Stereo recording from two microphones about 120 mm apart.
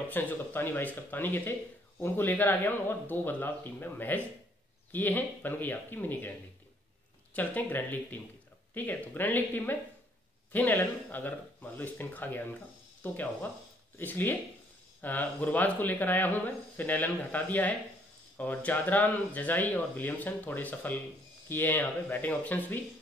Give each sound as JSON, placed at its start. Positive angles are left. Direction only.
{"t": 0.1, "sound": "speech", "side_deg": 15}
{"t": 7.3, "sound": "speech", "side_deg": 15}